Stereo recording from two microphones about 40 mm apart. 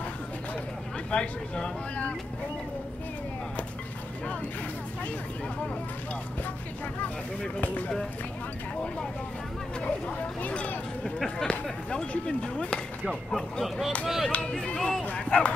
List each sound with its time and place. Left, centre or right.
1.1 s speech: left
9.8 s speech: left
13.3 s speech: centre
14.4 s speech: left
15.1 s speech: left